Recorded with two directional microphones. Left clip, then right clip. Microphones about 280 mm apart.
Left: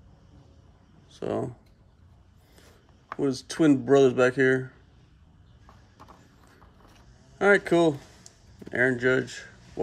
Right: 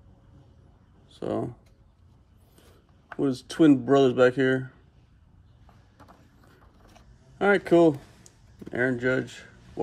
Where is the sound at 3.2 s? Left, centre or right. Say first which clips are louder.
Right 2 dB; centre.